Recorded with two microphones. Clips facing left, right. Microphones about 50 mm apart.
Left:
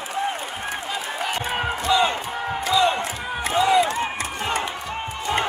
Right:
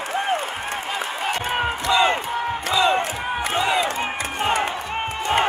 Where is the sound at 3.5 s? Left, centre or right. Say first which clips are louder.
Left 4 dB; right.